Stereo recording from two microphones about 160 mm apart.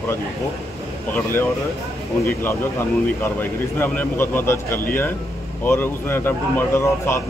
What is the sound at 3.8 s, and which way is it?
Speech, 15° left (ahead or behind).